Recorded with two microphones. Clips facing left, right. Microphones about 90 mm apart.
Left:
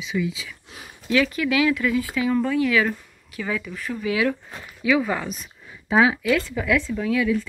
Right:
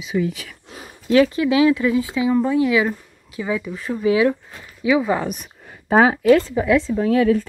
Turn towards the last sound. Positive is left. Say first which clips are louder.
# right 6 dB
turn(degrees=-45)  # may be behind; listen again after turning